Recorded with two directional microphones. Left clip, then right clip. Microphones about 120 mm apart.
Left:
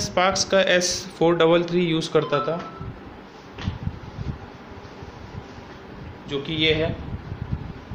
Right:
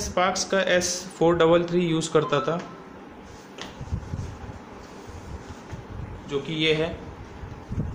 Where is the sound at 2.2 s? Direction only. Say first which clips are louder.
Left 1 dB; 15° right (ahead or behind).